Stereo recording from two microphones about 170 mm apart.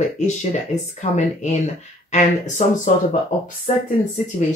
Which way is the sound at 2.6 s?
50° left (ahead or behind).